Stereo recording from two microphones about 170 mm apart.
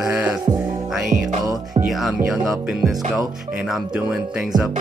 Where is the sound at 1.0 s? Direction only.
50° right (ahead or behind).